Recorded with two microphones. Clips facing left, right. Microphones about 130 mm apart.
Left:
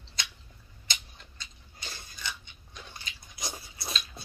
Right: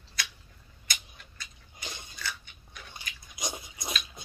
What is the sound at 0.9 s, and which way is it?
Tick-tock, 25° left (ahead or behind).